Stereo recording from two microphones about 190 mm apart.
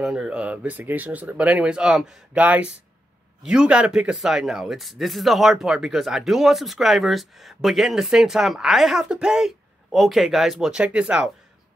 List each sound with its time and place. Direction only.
0.0 s speech: 5° right (ahead or behind)